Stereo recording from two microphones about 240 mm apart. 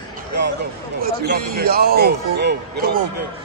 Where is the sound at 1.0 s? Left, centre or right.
Right.